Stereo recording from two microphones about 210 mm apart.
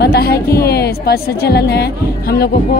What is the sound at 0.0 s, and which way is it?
A woman's voice, 50° left (ahead or behind).